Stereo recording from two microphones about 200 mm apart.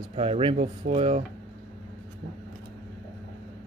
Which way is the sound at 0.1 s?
30° right (ahead or behind).